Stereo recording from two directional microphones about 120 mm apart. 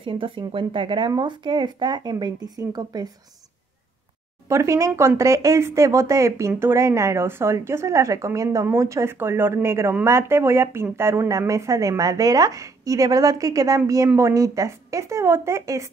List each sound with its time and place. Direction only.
0.0 s speech: 45° right (ahead or behind)
4.5 s speech: 25° right (ahead or behind)